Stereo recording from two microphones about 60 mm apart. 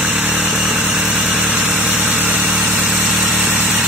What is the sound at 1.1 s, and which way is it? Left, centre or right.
Vehicle, right.